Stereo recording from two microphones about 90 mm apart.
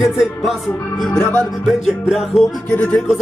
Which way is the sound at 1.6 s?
5° right (ahead or behind).